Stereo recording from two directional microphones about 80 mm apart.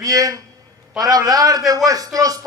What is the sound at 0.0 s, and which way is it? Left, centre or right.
A woman's voice, right.